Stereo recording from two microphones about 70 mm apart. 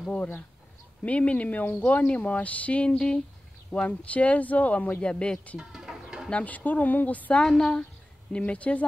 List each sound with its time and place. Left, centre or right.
1.0 s speech: centre
5.6 s music: centre
6.3 s speech: left
7.4 s a woman's voice: centre